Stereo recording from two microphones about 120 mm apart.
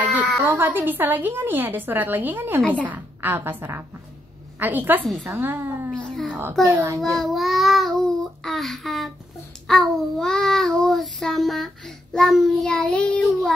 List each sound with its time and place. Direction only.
0.5 s a woman's voice: 15° right (ahead or behind)
5.9 s a child's voice: 5° left (ahead or behind)
6.6 s a child's voice: 25° right (ahead or behind)
7.0 s child singing: centre (ahead or behind)